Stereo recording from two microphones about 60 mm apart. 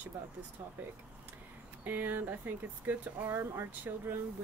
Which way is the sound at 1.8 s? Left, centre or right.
Right.